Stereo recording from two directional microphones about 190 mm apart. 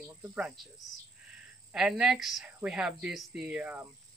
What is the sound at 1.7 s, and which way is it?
Speech, 5° right (ahead or behind).